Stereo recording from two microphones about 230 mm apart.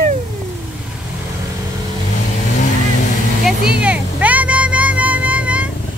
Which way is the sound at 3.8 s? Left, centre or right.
Centre.